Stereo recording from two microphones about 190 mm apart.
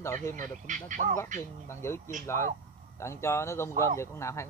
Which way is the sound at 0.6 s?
40° right (ahead or behind).